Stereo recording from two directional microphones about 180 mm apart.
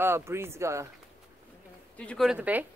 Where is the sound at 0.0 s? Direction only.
15° right (ahead or behind).